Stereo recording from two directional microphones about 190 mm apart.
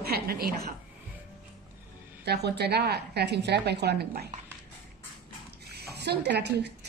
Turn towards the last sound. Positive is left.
turn(degrees=-65)  # may be behind; listen again after turning